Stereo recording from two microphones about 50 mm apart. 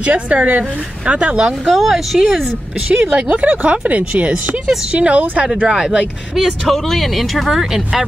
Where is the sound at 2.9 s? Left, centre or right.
Right.